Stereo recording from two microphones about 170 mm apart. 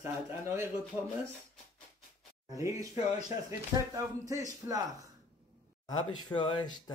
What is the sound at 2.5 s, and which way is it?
Speech, 20° right (ahead or behind).